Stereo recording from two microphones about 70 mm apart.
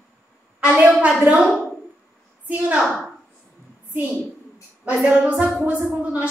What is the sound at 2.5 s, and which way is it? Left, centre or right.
Music, right.